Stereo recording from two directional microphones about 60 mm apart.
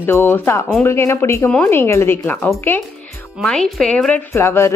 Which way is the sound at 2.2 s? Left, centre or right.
Left.